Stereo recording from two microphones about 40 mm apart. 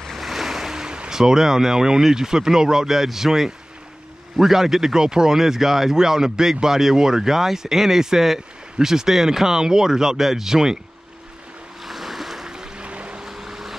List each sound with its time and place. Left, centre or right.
0.1 s speech: centre
11.8 s boat: centre
12.4 s a sound: centre
12.8 s boat: right
13.2 s boat: centre